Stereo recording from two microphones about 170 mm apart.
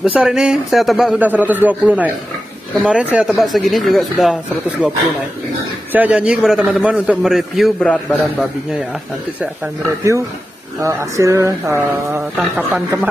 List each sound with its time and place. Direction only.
0.0 s a man's voice: 5° right (ahead or behind)
10.8 s a man's voice: 15° right (ahead or behind)